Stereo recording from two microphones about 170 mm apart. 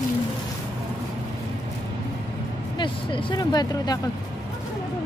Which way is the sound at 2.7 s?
30° left (ahead or behind).